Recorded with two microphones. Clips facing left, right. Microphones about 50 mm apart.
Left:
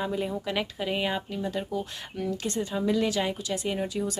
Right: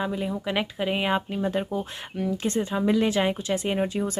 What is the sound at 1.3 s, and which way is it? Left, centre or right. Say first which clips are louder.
Speech: right 4 dB; right.